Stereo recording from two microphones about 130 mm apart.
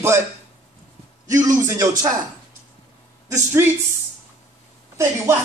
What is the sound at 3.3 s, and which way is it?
Speech, 20° right (ahead or behind).